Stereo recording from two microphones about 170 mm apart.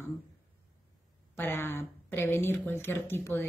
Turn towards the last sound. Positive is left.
turn(degrees=15)  # may be behind; listen again after turning